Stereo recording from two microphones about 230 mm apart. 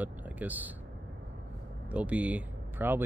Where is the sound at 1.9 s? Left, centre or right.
Centre.